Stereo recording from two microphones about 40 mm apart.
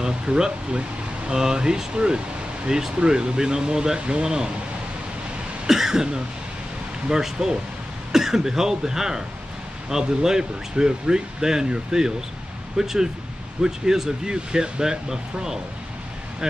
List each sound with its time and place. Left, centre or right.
0.0 s speech: right
5.7 s cough: centre
7.1 s speech: centre